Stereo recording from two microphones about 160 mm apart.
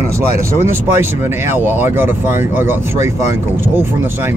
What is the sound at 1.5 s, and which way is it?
Speech, 15° right (ahead or behind).